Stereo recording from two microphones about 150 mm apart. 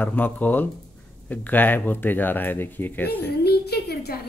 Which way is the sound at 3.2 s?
90° left.